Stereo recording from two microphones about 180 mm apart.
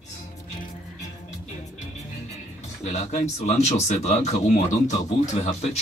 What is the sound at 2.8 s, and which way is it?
Speech, 40° left (ahead or behind).